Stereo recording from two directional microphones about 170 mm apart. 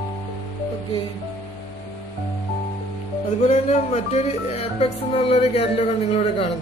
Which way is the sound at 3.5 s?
40° left (ahead or behind).